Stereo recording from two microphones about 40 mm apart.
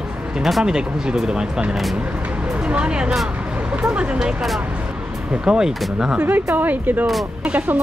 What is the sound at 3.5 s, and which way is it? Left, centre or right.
Vehicle, right.